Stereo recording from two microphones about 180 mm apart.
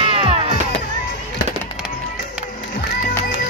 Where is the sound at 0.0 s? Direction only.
30° right (ahead or behind).